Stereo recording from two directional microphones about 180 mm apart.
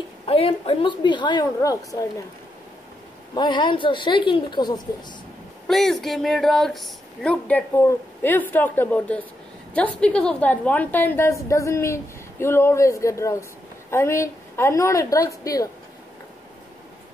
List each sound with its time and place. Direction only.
0.3 s a woman's voice: 30° left (ahead or behind)
3.3 s a woman's voice: 25° left (ahead or behind)
5.7 s a woman's voice: centre (ahead or behind); by 15.7 s 20° left (ahead or behind)